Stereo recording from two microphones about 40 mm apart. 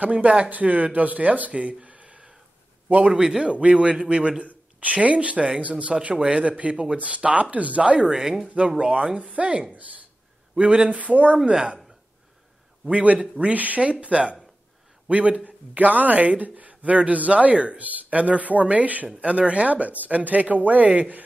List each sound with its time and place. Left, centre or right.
0.0 s a man's voice: right
3.2 s speech: centre
3.4 s a man's voice: right
4.7 s speech: right
6.0 s a man's voice: right
6.4 s speech: right
8.0 s speech: centre
8.5 s speech: right
11.5 s a man's voice: right
12.9 s a man's voice: right